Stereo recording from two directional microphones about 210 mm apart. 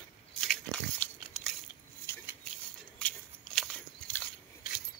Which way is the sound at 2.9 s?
5° left (ahead or behind).